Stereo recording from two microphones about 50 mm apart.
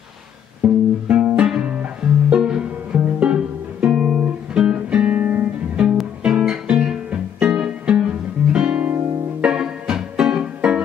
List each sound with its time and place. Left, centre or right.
0.6 s music: right
6.2 s guitar: centre
7.1 s music: centre